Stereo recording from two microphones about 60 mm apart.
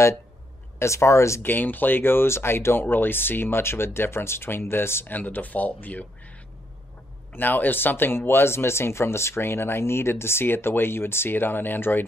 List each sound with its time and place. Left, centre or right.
0.7 s speech: left
1.4 s speech: left
5.0 s speech: left
7.3 s speech: left